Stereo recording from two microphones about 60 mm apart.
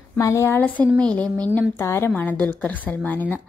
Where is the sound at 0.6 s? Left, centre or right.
Left.